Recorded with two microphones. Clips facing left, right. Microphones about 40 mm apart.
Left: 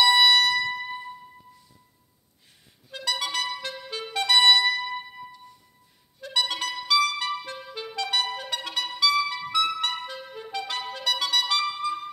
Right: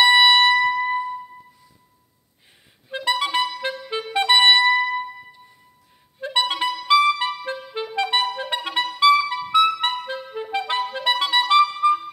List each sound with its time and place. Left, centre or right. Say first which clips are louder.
0.0 s music: right 5 dB; right
2.9 s clarinet: right 7 dB; right
4.1 s music: right 4 dB; right
6.1 s clarinet: right 5 dB; right
8.5 s music: right 8 dB; right
9.0 s clarinet: right 8 dB; right